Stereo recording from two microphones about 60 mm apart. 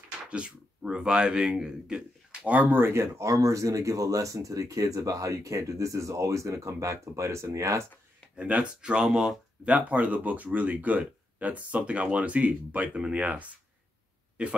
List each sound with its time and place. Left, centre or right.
0.3 s speech: centre
2.8 s speech: right
8.4 s speech: right
9.7 s speech: right